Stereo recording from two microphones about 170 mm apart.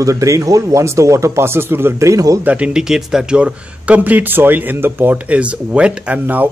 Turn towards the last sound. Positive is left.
turn(degrees=-10)  # may be behind; listen again after turning